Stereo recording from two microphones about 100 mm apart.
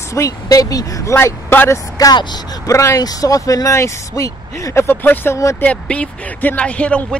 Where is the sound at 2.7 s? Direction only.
35° left (ahead or behind).